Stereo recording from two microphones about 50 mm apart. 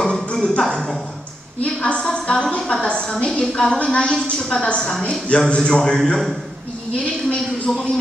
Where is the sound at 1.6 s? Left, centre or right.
Left.